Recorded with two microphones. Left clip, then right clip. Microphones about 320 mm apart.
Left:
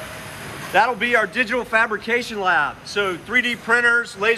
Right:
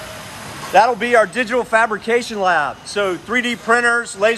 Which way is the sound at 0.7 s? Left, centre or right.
Right.